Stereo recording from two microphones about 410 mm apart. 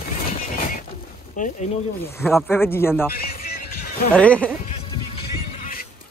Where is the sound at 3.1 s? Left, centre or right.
Left.